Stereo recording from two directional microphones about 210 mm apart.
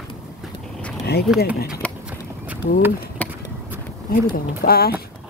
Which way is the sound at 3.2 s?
5° left (ahead or behind).